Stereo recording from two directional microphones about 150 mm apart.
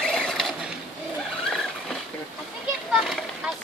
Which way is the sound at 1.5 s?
Centre (ahead or behind).